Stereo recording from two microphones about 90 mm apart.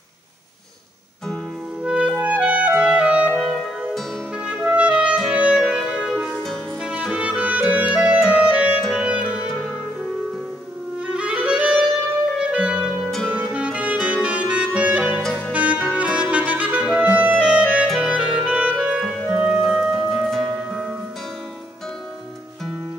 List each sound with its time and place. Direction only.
1.8 s clarinet: 10° right (ahead or behind)
4.4 s music: 15° right (ahead or behind)
5.3 s clarinet: 15° right (ahead or behind)
5.6 s music: 10° right (ahead or behind)
6.8 s clarinet: 10° right (ahead or behind)
8.9 s music: 15° right (ahead or behind)
11.0 s music: 10° right (ahead or behind)
12.4 s clarinet: 10° right (ahead or behind)
13.3 s music: 15° right (ahead or behind)
15.9 s clarinet: 15° right (ahead or behind)
19.6 s music: 5° right (ahead or behind)